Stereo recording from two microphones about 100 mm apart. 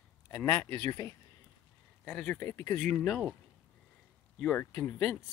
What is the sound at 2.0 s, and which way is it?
Speech, 15° left (ahead or behind).